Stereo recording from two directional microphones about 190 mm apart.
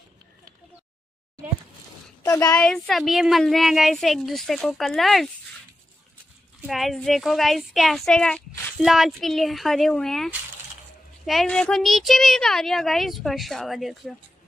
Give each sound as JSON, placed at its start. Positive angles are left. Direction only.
{"t": 2.2, "sound": "a woman's voice", "side_deg": 15}
{"t": 2.5, "sound": "a child's voice", "side_deg": 5}
{"t": 6.6, "sound": "a child's voice", "side_deg": 0}